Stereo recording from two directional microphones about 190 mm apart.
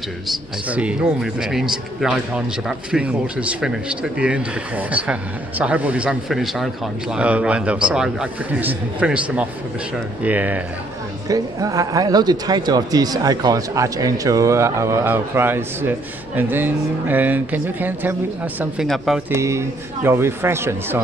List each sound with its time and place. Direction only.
0.7 s speech: 5° right (ahead or behind)
19.3 s speech: 15° right (ahead or behind)